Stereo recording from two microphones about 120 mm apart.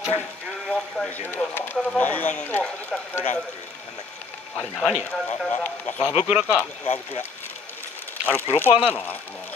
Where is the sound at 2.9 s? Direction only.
Centre (ahead or behind).